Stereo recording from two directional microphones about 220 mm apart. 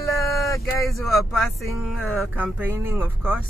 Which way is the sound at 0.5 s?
15° left (ahead or behind).